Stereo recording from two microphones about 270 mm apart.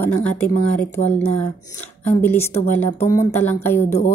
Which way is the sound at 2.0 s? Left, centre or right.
Centre.